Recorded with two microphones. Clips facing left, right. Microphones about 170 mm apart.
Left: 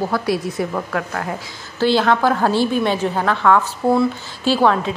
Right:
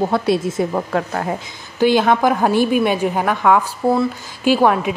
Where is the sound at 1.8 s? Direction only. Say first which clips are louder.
Right 2 dB; 15° right (ahead or behind).